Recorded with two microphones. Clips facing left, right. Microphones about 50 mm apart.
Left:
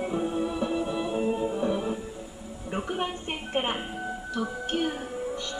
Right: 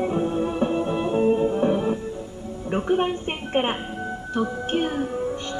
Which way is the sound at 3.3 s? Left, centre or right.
Right.